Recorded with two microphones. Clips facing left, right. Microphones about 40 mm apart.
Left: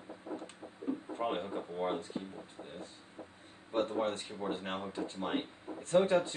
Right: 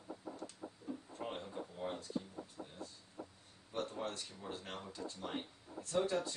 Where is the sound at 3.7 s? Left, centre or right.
Left.